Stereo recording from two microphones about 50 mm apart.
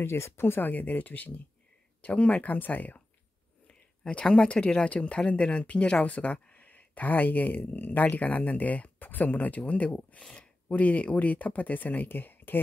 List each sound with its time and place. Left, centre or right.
0.0 s speech: left
3.6 s speech: left